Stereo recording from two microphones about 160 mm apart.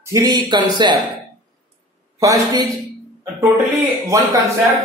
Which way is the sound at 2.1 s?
20° right (ahead or behind).